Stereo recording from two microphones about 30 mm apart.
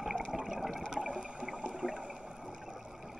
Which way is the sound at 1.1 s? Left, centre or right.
Right.